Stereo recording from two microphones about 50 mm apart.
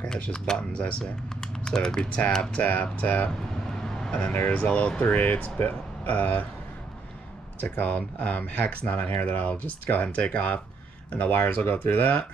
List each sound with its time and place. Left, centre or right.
0.0 s speech: centre
2.7 s speech: left
3.7 s vehicle: centre
4.1 s speech: left
7.7 s speech: left